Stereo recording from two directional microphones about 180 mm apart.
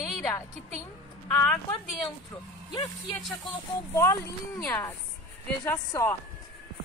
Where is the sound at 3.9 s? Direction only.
15° left (ahead or behind).